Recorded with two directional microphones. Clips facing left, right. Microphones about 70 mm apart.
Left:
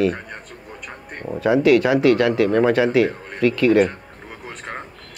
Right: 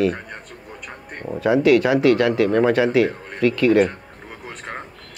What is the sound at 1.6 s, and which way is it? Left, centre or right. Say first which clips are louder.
Speech: even; left.